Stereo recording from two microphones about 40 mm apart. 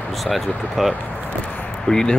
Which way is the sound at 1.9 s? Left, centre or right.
Centre.